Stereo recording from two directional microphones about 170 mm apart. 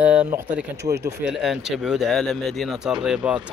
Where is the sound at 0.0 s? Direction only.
10° right (ahead or behind).